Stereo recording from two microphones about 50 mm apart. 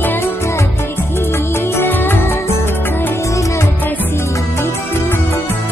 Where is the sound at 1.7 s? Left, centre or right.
Left.